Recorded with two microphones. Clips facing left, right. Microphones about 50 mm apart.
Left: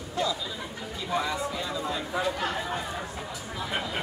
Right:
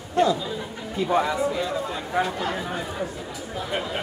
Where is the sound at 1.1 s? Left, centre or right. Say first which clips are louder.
Right 6 dB; right.